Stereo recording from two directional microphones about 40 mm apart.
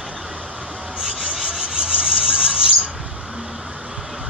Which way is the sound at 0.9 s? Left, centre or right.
Centre.